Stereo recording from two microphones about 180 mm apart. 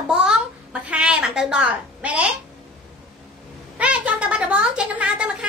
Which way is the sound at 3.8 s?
5° right (ahead or behind).